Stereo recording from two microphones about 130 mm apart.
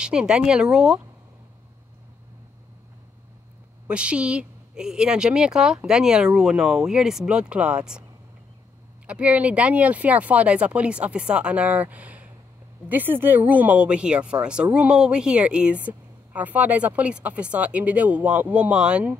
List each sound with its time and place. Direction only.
0.0 s speech: 5° right (ahead or behind)
3.8 s speech: 10° right (ahead or behind)
9.0 s speech: 10° right (ahead or behind)